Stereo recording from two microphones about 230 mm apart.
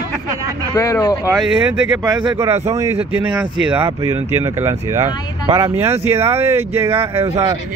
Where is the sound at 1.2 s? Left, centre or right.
Centre.